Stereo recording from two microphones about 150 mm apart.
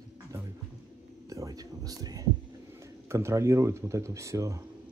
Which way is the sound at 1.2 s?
25° right (ahead or behind).